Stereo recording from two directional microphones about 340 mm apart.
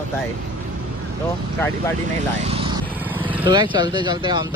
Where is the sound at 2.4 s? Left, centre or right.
Centre.